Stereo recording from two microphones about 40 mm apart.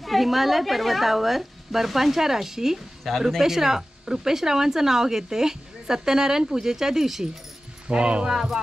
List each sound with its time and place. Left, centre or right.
0.0 s a woman's voice: centre
7.9 s speech: right
8.3 s speech: centre